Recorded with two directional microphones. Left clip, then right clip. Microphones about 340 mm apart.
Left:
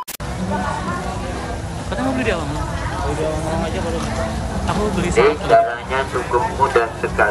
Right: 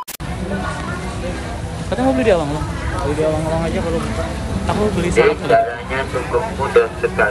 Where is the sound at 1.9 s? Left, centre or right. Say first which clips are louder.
Right 6 dB; centre.